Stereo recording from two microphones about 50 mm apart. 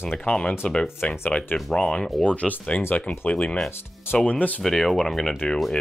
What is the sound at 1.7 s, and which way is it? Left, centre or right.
Speech, centre.